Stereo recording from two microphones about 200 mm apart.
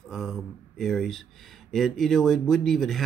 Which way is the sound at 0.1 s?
Centre (ahead or behind).